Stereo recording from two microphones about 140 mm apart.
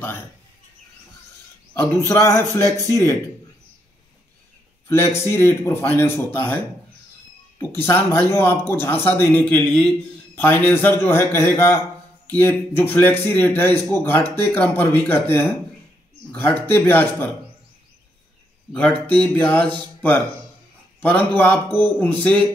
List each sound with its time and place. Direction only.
1.7 s a man's voice: 20° left (ahead or behind)
4.8 s a man's voice: 15° left (ahead or behind)
7.7 s a man's voice: 15° left (ahead or behind)
18.7 s speech: 10° left (ahead or behind)